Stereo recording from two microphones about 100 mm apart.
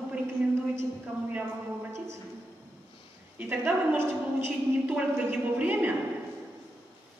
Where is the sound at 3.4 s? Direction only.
20° right (ahead or behind).